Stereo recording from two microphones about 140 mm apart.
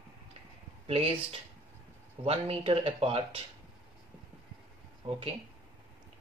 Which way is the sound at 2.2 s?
45° right (ahead or behind).